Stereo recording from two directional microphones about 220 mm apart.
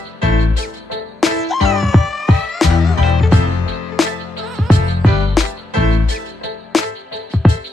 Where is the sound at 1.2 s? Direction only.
Centre (ahead or behind).